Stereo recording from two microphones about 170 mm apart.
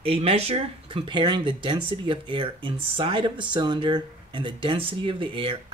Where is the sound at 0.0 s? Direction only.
35° right (ahead or behind).